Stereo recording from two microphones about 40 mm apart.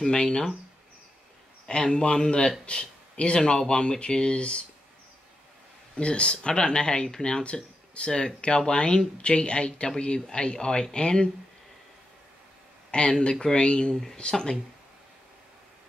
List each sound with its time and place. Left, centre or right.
0.0 s speech: left
1.7 s speech: left
5.9 s speech: left
7.4 s speech: left
8.1 s speech: centre
13.2 s speech: centre